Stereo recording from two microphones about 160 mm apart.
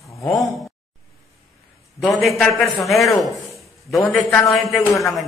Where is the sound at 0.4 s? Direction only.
Centre (ahead or behind).